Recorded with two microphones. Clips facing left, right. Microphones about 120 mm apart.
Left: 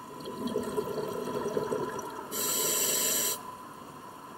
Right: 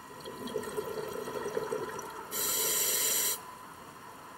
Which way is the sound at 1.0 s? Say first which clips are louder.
Left 4 dB; centre (ahead or behind).